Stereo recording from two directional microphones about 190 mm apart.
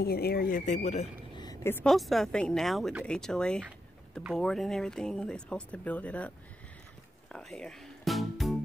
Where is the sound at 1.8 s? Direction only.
Centre (ahead or behind).